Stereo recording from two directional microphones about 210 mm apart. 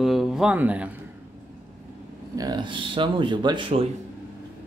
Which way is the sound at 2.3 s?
20° right (ahead or behind).